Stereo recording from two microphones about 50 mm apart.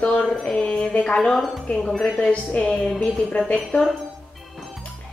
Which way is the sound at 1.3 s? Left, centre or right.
Centre.